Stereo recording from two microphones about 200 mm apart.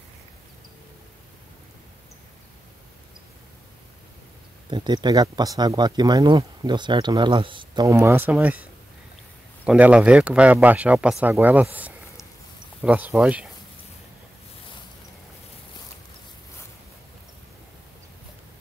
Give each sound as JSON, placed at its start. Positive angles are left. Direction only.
{"t": 4.6, "sound": "speech", "side_deg": -20}
{"t": 9.7, "sound": "speech", "side_deg": -5}